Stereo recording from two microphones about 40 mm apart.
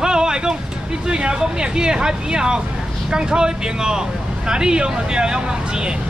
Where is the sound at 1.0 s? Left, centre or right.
Right.